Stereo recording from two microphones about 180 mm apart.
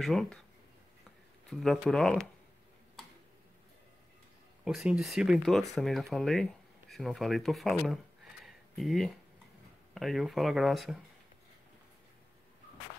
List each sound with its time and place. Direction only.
0.0 s speech: centre (ahead or behind)
1.5 s speech: centre (ahead or behind)
4.6 s speech: 5° right (ahead or behind)
8.5 s a sound: centre (ahead or behind)
9.9 s speech: centre (ahead or behind)